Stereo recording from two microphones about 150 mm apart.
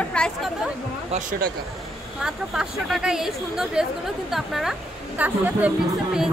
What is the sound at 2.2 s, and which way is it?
Speech, 5° right (ahead or behind).